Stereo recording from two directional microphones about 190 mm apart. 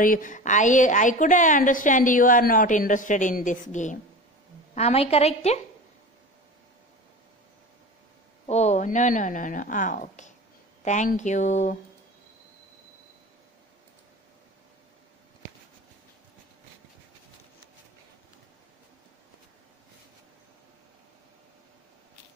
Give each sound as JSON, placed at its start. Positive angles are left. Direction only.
{"t": 0.0, "sound": "a woman's voice", "side_deg": 45}
{"t": 8.5, "sound": "a woman's voice", "side_deg": 35}